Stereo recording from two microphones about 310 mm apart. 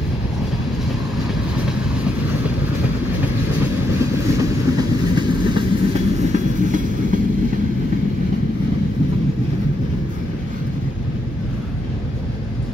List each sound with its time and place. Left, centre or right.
4.4 s train: centre